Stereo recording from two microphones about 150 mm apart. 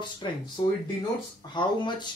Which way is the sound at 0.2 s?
30° left (ahead or behind).